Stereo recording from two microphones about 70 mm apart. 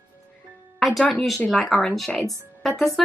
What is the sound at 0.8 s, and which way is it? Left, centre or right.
A woman's voice, centre.